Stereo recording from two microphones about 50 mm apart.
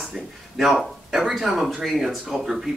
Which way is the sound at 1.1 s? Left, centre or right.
Centre.